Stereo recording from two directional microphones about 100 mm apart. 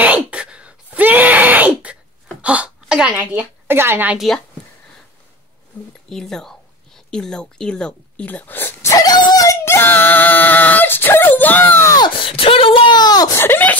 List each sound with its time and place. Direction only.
0.0 s a sound: 15° right (ahead or behind)
3.6 s a woman's voice: 25° right (ahead or behind)
6.0 s speech: 5° left (ahead or behind); by 8.9 s 20° left (ahead or behind)
8.9 s a sound: 40° left (ahead or behind); by 11.9 s 20° left (ahead or behind)
12.2 s speech: 65° left (ahead or behind); by 13.4 s 40° left (ahead or behind)
13.4 s speech: 20° left (ahead or behind)